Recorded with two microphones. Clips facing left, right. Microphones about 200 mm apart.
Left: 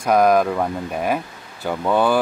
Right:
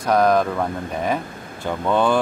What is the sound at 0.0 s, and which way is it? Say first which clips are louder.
Speech: left 2 dB; 10° left (ahead or behind).